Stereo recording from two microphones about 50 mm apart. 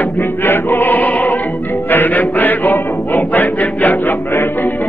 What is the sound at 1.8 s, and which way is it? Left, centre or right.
Music, left.